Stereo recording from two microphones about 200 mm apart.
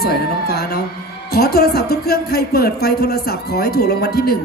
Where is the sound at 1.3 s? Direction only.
50° left (ahead or behind).